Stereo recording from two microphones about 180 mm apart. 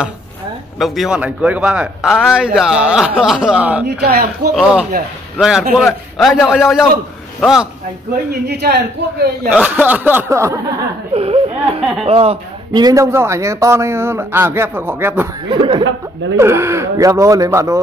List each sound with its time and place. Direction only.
0.7 s a man's voice: centre (ahead or behind)
4.0 s a man's voice: 60° right (ahead or behind)
4.6 s a man's voice: 5° right (ahead or behind)
8.5 s a man's voice: 65° right (ahead or behind)
9.5 s a man's voice: 10° right (ahead or behind)
11.1 s speech: 30° right (ahead or behind)
11.8 s a man's voice: centre (ahead or behind)
12.1 s a man's voice: 30° right (ahead or behind); by 15.2 s 10° right (ahead or behind)
15.4 s speech: 25° right (ahead or behind)
16.3 s a man's voice: 15° right (ahead or behind)